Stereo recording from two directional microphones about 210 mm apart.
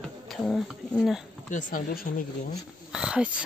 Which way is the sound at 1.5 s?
40° left (ahead or behind).